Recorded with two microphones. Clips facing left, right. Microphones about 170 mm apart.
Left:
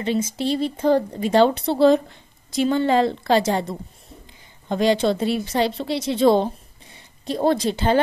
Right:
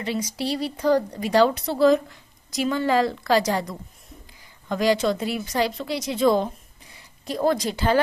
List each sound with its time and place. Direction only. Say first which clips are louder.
0.0 s a woman's voice: left 4 dB; 25° left (ahead or behind)